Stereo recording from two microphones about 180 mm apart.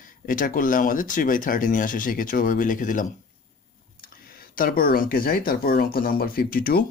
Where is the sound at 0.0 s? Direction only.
50° left (ahead or behind).